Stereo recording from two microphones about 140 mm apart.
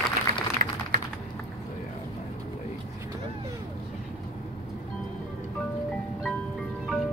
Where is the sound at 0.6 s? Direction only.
70° right (ahead or behind).